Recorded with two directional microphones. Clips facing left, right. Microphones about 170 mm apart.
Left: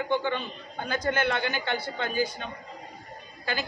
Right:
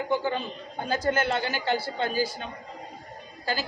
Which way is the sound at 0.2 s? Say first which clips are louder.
Right 1 dB; 35° right (ahead or behind).